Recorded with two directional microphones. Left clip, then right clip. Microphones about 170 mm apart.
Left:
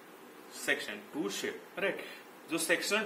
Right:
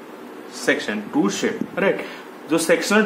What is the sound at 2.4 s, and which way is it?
Speech, 50° right (ahead or behind).